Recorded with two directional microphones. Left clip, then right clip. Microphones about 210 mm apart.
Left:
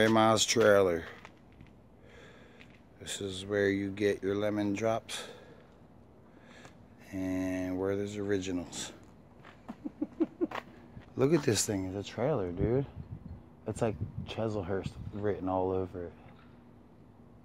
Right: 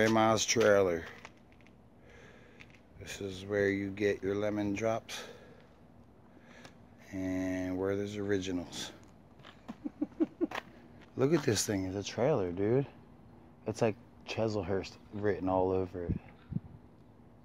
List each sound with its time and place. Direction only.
0.0 s speech: 5° left (ahead or behind)
3.0 s speech: 5° left (ahead or behind)
7.1 s speech: centre (ahead or behind)
10.0 s a sound: 45° right (ahead or behind)
11.1 s speech: 5° left (ahead or behind)
11.7 s speech: 15° right (ahead or behind)